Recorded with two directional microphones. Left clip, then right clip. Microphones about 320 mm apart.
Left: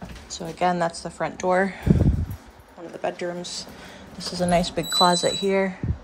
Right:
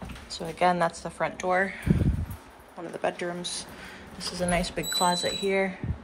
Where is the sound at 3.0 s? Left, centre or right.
Centre.